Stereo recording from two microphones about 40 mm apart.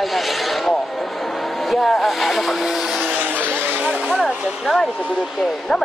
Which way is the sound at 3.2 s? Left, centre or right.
Right.